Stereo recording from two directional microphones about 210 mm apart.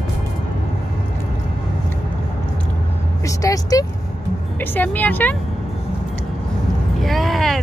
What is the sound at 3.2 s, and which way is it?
Vehicle, 15° left (ahead or behind).